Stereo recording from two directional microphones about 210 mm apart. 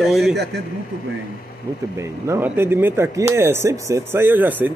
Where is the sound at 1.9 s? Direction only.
15° right (ahead or behind).